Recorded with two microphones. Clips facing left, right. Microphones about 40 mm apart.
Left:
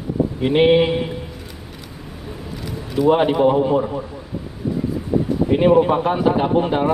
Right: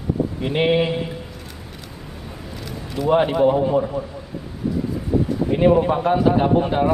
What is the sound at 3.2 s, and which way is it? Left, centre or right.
Speech, left.